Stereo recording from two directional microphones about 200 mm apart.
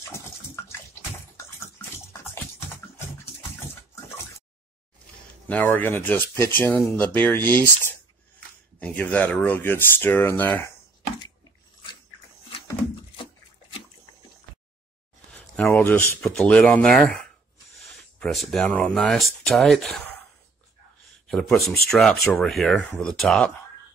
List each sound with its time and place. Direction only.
1.3 s a sound: 15° left (ahead or behind)
5.5 s speech: 10° left (ahead or behind)
15.3 s speech: 5° left (ahead or behind)
21.3 s speech: centre (ahead or behind)